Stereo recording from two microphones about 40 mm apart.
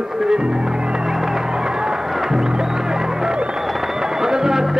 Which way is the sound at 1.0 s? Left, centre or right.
Centre.